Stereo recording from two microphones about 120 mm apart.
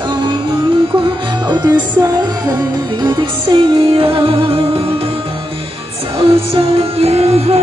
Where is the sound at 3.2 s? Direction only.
45° right (ahead or behind).